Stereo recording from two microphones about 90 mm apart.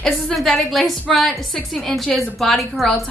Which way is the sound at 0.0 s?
5° left (ahead or behind).